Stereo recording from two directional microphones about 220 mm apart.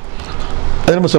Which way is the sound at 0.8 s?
10° right (ahead or behind).